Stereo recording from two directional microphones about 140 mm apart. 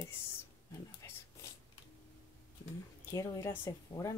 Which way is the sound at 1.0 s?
20° left (ahead or behind).